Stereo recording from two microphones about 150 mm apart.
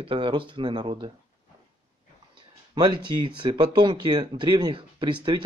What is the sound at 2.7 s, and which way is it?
Speech, 30° right (ahead or behind).